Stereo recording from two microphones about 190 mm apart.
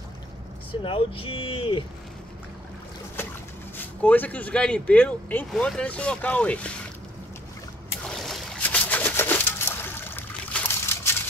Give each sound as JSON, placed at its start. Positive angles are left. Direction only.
{"t": 0.8, "sound": "speech", "side_deg": 30}
{"t": 3.2, "sound": "boat", "side_deg": 10}
{"t": 3.7, "sound": "speech", "side_deg": 10}
{"t": 8.0, "sound": "pigeon", "side_deg": 0}